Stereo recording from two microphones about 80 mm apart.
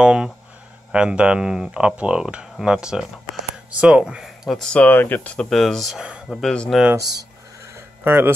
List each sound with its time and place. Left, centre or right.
0.0 s speech: centre
4.6 s speech: centre
4.8 s speech: left; by 5.9 s centre
5.9 s speech: centre
6.2 s speech: centre
7.0 s speech: right
8.0 s speech: right